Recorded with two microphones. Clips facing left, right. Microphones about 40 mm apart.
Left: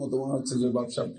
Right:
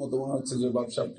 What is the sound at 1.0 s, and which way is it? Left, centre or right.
Speech, centre.